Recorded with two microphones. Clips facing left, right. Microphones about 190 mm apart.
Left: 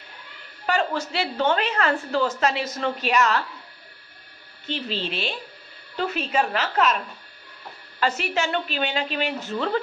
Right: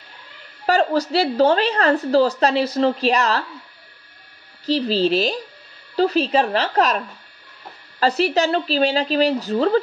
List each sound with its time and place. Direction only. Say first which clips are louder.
0.7 s a woman's voice: right 6 dB; 35° right (ahead or behind)
4.6 s a woman's voice: right 11 dB; 35° right (ahead or behind)
8.0 s a woman's voice: right 7 dB; 35° right (ahead or behind)